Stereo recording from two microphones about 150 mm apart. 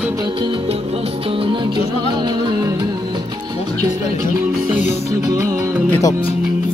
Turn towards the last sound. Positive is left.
turn(degrees=20)  # may be behind; listen again after turning